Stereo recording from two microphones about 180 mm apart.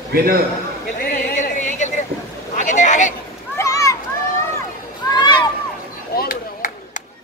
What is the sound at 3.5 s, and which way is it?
Children playing, 20° left (ahead or behind).